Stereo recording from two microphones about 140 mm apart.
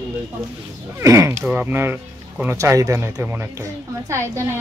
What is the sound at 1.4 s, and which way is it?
Speech, 10° right (ahead or behind).